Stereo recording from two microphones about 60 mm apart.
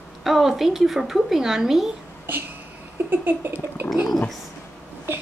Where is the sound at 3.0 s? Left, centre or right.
Right.